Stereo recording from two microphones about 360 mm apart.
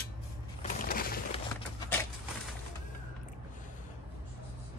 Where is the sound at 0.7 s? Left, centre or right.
Left.